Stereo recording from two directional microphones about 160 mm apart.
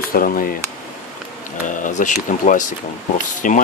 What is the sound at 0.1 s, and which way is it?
Speech, 60° left (ahead or behind).